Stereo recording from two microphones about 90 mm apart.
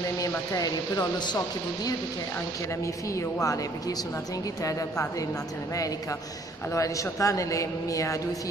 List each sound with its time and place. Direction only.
0.2 s speech: 45° left (ahead or behind)
3.2 s a man's voice: 35° left (ahead or behind)
6.7 s a man's voice: 35° left (ahead or behind)